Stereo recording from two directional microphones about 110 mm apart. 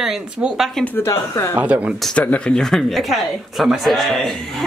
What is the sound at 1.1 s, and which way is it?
Speech, 30° left (ahead or behind).